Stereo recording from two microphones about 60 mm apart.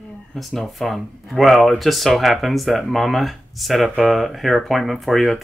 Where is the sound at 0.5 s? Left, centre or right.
Centre.